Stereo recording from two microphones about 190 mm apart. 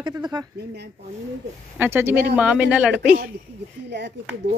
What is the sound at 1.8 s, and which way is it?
Speech, 10° right (ahead or behind).